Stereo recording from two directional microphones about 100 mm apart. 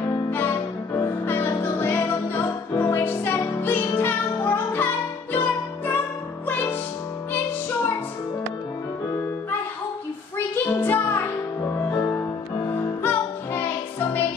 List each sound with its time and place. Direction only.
0.3 s music: 25° left (ahead or behind)
10.3 s music: 25° left (ahead or behind)